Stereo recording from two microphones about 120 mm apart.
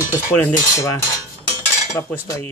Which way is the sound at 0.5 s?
30° left (ahead or behind).